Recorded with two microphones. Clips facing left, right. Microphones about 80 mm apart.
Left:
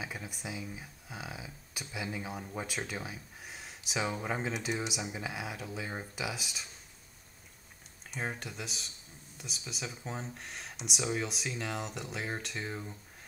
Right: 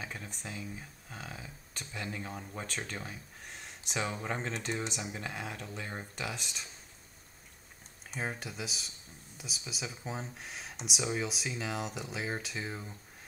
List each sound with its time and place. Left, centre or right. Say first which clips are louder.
0.0 s speech: left 2 dB; centre
8.1 s speech: even; centre